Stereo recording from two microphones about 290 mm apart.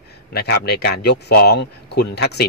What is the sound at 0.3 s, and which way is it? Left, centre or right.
Speech, left.